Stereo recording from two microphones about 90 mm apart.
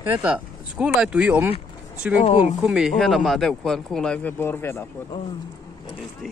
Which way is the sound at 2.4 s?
10° right (ahead or behind).